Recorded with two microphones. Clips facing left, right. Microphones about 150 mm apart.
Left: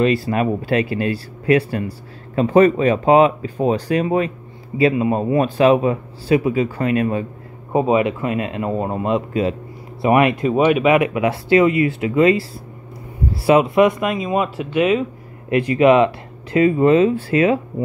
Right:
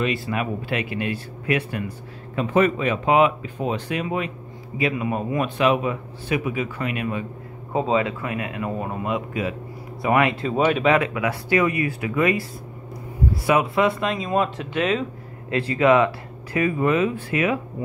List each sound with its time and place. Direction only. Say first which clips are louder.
0.0 s speech: left 7 dB; 35° left (ahead or behind)
7.7 s speech: left 5 dB; 20° left (ahead or behind)
10.0 s speech: left 5 dB; 20° left (ahead or behind)
14.1 s speech: left 3 dB; 5° left (ahead or behind); by 17.6 s 30° left (ahead or behind)